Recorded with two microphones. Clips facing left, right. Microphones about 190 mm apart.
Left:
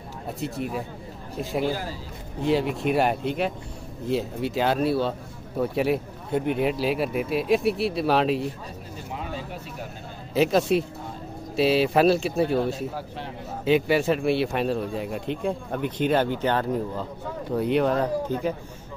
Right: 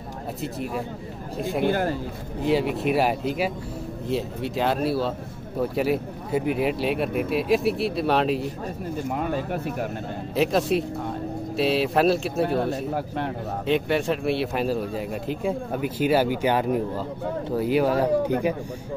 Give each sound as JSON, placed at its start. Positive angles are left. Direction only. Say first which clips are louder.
{"t": 0.4, "sound": "speech", "louder": "even", "side_deg": 0}
{"t": 1.6, "sound": "a man's voice", "louder": "right 5 dB", "side_deg": -60}
{"t": 2.4, "sound": "speech", "louder": "right 1 dB", "side_deg": 0}
{"t": 9.1, "sound": "a sound", "louder": "right 5 dB", "side_deg": -55}
{"t": 10.3, "sound": "speech", "louder": "left 1 dB", "side_deg": 0}
{"t": 12.4, "sound": "a man's voice", "louder": "even", "side_deg": -60}
{"t": 13.7, "sound": "speech", "louder": "left 2 dB", "side_deg": 5}